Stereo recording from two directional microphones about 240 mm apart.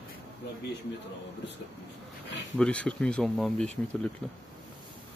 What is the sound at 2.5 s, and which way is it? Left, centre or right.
Speech, centre.